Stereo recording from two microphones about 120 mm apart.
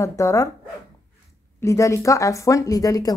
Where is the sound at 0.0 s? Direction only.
25° left (ahead or behind).